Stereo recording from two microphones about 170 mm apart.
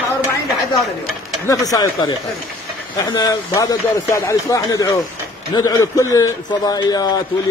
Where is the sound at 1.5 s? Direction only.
20° left (ahead or behind).